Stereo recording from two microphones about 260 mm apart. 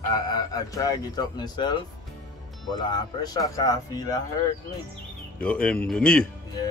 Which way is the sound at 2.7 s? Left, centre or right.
Centre.